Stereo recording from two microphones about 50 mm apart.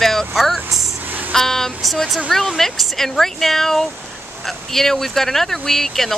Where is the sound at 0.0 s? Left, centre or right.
Centre.